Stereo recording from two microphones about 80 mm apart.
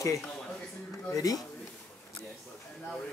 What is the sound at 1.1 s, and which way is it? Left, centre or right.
Speech, left.